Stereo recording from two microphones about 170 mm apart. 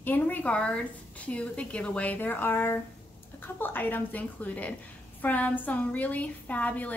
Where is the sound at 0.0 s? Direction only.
10° left (ahead or behind).